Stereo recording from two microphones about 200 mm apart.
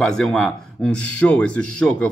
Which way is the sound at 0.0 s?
5° left (ahead or behind).